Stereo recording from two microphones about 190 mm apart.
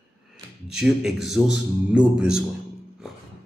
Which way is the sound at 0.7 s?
Centre (ahead or behind).